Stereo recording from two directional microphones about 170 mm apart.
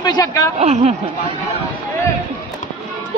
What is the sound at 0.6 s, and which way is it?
Speech, 40° right (ahead or behind).